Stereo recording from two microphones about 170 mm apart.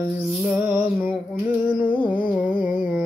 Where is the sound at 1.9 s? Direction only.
25° left (ahead or behind).